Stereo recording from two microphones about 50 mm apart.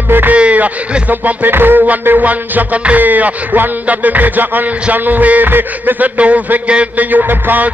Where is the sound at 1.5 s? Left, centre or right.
Right.